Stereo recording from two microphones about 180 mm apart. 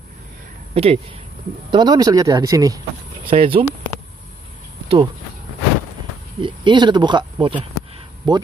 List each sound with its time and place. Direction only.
0.8 s speech: 35° right (ahead or behind)
1.7 s speech: 25° right (ahead or behind)
3.3 s speech: 30° right (ahead or behind)
4.8 s cricket: 30° right (ahead or behind)
6.4 s speech: 25° right (ahead or behind)